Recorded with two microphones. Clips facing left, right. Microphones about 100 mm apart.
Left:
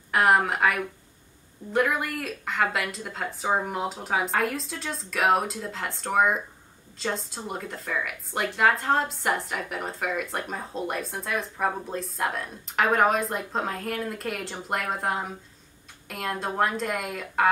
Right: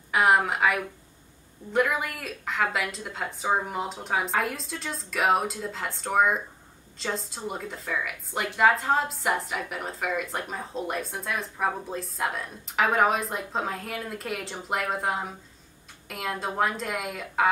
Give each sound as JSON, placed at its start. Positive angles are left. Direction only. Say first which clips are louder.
{"t": 0.1, "sound": "a woman's voice", "louder": "left 1 dB", "side_deg": 0}